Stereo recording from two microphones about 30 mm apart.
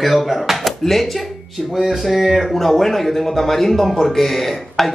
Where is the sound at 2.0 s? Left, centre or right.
Centre.